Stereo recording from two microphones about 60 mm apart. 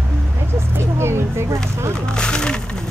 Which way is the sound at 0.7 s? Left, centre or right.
Right.